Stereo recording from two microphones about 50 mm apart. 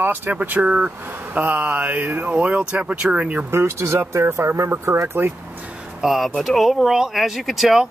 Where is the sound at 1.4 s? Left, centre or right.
Right.